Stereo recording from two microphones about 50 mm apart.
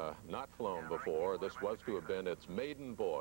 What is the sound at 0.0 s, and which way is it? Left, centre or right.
Speech, centre.